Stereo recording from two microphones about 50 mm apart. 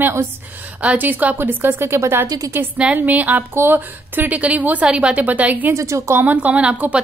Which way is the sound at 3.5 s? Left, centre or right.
Right.